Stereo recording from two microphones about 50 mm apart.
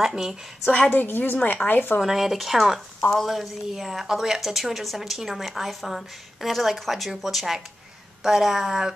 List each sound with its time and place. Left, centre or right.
0.0 s speech: centre
0.9 s a woman's voice: left
2.0 s a woman's voice: centre